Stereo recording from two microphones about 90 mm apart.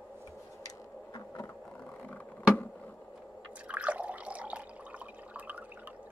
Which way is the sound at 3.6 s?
15° right (ahead or behind).